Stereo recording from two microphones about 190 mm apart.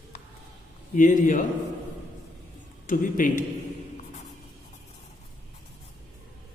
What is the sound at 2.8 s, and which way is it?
Speech, 45° left (ahead or behind).